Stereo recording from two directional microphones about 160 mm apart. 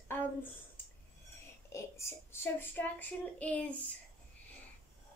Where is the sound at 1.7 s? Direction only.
15° left (ahead or behind).